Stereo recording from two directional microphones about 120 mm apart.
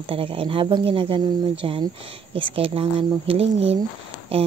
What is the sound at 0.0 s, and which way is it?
Speech, 50° right (ahead or behind).